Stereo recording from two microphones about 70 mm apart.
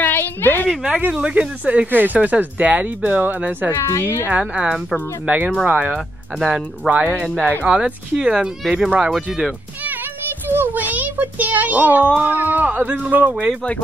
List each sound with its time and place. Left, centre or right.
0.0 s a sound: left
1.0 s speech: centre
4.3 s speech: centre
10.5 s speech: right